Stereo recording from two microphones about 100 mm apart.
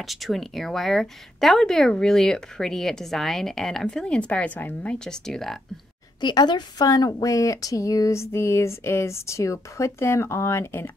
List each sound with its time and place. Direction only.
0.0 s speech: centre (ahead or behind)
6.2 s a woman's voice: 50° left (ahead or behind); by 10.9 s 25° left (ahead or behind)